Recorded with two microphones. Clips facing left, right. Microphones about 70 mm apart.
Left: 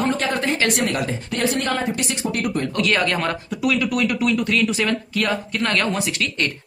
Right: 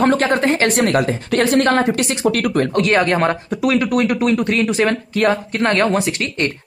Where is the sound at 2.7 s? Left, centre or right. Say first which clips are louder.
Right 4 dB; right.